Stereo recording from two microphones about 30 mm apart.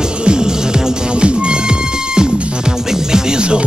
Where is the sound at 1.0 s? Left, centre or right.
Right.